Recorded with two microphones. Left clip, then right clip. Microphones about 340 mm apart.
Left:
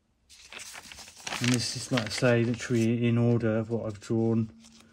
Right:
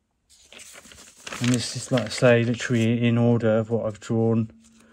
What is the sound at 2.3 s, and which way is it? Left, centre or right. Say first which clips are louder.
Speech: right 7 dB; right.